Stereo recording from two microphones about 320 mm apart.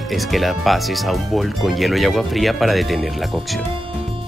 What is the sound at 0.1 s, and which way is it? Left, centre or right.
Speech, centre.